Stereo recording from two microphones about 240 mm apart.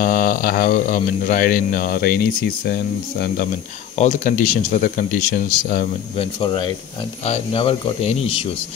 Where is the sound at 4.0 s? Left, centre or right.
Left.